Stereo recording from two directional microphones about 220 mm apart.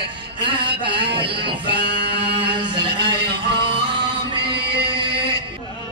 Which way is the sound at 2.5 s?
20° right (ahead or behind).